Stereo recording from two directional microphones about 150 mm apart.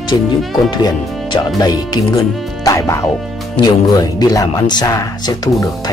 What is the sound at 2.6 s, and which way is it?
Speech, 20° left (ahead or behind).